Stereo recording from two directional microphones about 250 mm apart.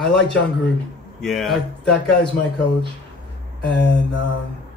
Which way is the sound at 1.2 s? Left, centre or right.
Centre.